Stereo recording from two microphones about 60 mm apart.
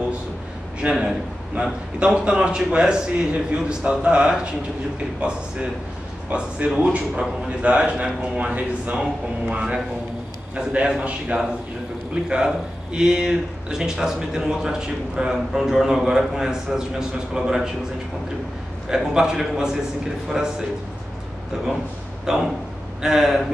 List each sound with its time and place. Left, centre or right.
0.7 s a man's voice: centre
12.9 s speech: centre
18.9 s speech: centre
22.2 s speech: centre